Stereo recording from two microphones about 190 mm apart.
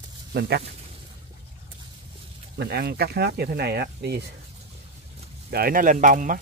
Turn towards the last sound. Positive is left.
turn(degrees=-45)  # may be behind; listen again after turning